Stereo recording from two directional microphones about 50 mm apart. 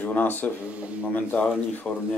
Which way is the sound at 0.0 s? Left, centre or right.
Left.